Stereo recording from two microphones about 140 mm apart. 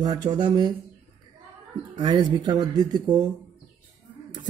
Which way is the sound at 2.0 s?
35° right (ahead or behind).